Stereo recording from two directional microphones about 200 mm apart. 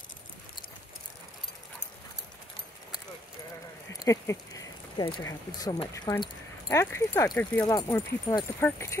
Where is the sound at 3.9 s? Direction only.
15° left (ahead or behind).